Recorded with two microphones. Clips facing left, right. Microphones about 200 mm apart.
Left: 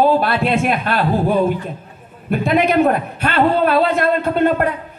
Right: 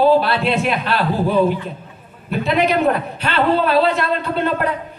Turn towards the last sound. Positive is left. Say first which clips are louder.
# left 5 dB
turn(degrees=50)  # may be behind; listen again after turning